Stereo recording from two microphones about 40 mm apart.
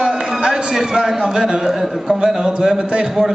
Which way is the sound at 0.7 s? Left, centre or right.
Centre.